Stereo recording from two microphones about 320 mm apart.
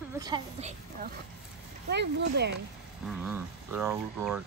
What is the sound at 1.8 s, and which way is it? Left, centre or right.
Speech, right.